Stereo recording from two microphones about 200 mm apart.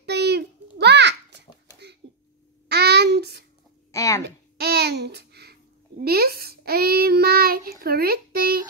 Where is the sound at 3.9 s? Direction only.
15° left (ahead or behind).